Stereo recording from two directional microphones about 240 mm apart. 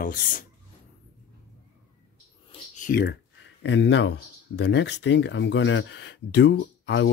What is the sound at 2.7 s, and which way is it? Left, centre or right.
Speech, left.